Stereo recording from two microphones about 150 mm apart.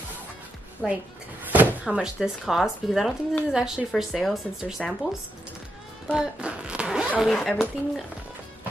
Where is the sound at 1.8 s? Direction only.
5° right (ahead or behind).